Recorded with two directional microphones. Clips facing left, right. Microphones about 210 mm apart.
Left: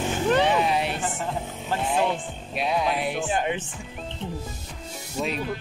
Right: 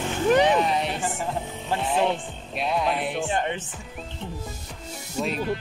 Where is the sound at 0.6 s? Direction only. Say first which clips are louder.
Even; 5° left (ahead or behind).